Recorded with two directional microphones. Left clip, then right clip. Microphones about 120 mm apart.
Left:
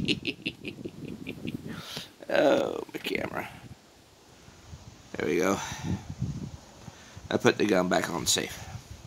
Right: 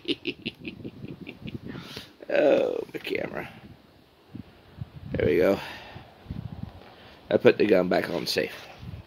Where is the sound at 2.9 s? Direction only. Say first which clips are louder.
Right 1 dB; 55° left (ahead or behind).